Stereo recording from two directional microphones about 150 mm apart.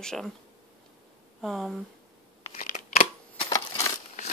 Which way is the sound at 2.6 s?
60° left (ahead or behind).